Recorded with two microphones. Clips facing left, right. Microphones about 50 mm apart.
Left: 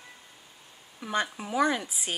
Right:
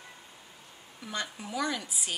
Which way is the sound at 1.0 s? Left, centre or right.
Left.